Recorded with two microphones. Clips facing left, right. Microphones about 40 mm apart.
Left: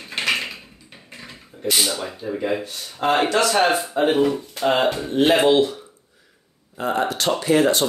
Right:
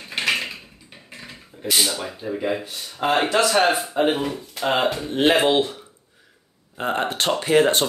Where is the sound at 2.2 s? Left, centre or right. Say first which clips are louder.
Left 1 dB; centre.